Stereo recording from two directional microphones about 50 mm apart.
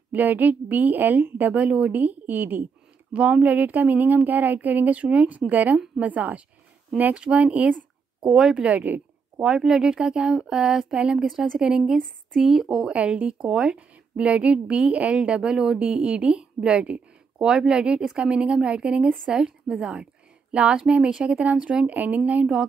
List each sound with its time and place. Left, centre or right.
0.1 s a woman's voice: right
3.1 s a woman's voice: right
8.3 s speech: centre
8.6 s a woman's voice: right
9.4 s speech: centre
12.9 s a woman's voice: right
17.4 s a woman's voice: centre
21.9 s a woman's voice: right